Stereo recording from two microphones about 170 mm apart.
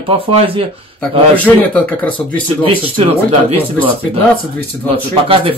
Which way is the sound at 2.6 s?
30° right (ahead or behind).